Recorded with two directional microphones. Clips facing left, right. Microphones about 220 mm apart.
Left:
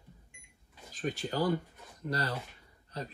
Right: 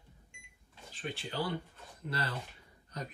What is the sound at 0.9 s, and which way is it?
Speech, 40° left (ahead or behind).